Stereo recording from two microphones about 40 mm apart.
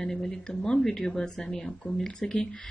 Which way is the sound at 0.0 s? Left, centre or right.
Centre.